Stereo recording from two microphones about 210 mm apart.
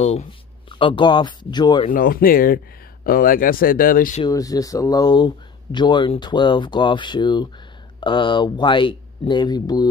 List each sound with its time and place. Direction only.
0.0 s speech: 30° left (ahead or behind)
1.9 s speech: 45° left (ahead or behind)
4.2 s speech: 15° left (ahead or behind)